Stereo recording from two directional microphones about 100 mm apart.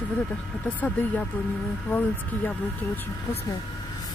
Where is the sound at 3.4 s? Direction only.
40° left (ahead or behind).